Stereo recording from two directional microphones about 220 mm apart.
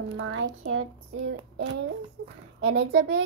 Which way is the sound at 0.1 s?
60° right (ahead or behind).